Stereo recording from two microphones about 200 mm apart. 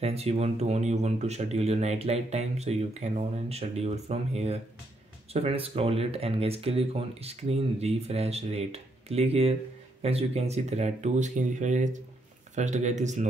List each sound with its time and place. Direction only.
0.0 s speech: 30° right (ahead or behind)